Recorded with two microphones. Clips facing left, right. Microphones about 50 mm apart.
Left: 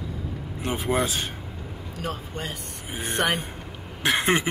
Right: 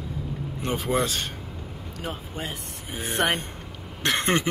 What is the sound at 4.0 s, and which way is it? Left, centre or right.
Speech, centre.